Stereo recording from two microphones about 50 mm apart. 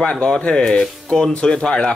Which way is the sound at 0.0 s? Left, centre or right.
Centre.